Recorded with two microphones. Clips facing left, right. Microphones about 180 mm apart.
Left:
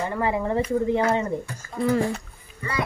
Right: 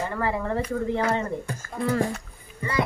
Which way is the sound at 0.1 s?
15° left (ahead or behind).